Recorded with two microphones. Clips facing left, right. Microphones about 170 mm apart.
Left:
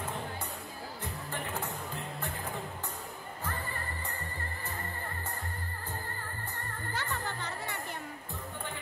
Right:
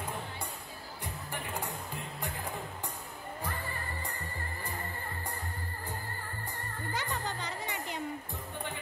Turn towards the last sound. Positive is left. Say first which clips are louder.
# right 1 dB
turn(degrees=-15)  # may be behind; listen again after turning